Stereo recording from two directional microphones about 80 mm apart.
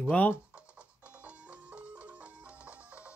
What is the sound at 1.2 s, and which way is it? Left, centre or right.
Music, centre.